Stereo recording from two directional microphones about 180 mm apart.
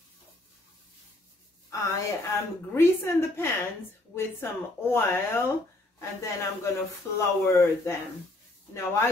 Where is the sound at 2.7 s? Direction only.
15° left (ahead or behind).